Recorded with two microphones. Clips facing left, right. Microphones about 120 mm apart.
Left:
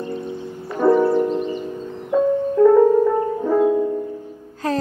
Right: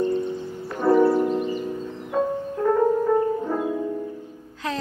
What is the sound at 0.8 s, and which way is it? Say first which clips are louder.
Music: left 4 dB; 55° left (ahead or behind).